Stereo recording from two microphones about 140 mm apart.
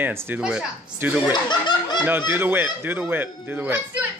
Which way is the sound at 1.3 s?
35° left (ahead or behind).